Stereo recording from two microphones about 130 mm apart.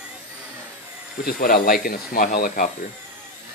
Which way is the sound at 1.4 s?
90° left.